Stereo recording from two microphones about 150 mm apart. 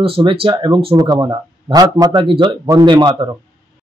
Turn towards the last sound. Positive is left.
turn(degrees=-30)  # may be behind; listen again after turning